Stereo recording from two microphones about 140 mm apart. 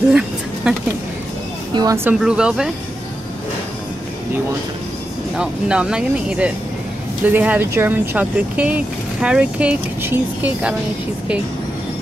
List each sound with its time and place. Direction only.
0.7 s speech: 5° right (ahead or behind)
1.7 s speech: 30° right (ahead or behind)
2.1 s speech: 5° right (ahead or behind)
5.3 s speech: 5° right (ahead or behind)